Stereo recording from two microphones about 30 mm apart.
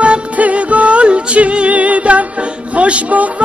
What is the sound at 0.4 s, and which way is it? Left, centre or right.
Music, right.